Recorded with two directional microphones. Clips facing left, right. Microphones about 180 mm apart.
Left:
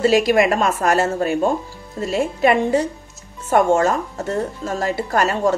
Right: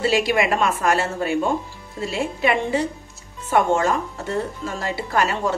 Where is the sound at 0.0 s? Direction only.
45° left (ahead or behind).